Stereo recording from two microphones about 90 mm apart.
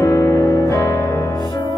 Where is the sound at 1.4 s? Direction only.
50° left (ahead or behind).